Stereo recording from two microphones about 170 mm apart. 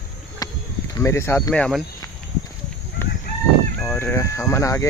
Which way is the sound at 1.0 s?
15° left (ahead or behind).